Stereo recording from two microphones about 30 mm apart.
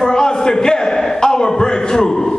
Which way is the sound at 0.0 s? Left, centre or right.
Left.